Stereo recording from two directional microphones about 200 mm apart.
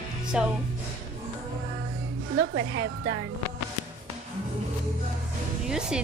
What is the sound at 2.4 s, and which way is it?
Speech, 70° right (ahead or behind).